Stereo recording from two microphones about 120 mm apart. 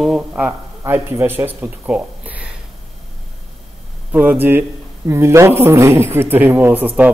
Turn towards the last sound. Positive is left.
turn(degrees=-15)  # may be behind; listen again after turning